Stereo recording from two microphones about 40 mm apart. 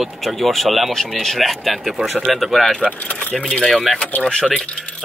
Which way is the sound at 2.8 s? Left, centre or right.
Left.